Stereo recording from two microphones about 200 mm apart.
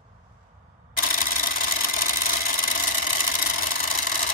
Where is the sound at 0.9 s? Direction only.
45° left (ahead or behind).